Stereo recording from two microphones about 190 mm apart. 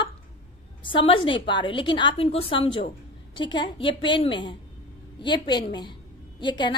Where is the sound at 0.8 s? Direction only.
25° left (ahead or behind).